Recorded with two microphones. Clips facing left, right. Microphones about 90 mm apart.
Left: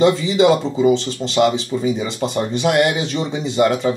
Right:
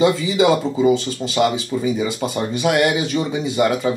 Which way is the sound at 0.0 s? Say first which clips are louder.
Left 2 dB; 5° right (ahead or behind).